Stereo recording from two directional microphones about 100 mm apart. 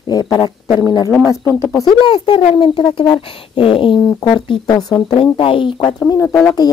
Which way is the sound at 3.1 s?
65° left (ahead or behind).